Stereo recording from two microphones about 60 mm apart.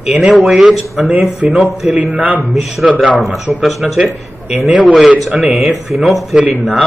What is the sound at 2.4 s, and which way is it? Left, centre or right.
A man's voice, centre.